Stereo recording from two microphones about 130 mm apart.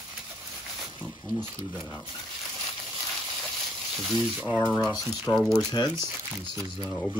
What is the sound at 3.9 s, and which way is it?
Speech, centre (ahead or behind).